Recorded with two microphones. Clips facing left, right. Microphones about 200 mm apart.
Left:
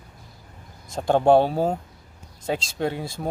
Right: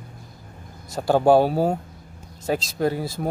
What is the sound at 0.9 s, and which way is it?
Speech, 5° right (ahead or behind).